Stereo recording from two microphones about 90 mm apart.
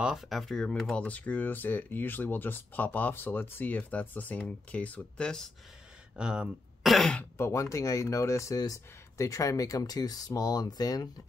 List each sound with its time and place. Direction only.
0.1 s speech: centre (ahead or behind)
6.1 s speech: 10° right (ahead or behind)
6.9 s speech: centre (ahead or behind)
7.3 s speech: 30° left (ahead or behind)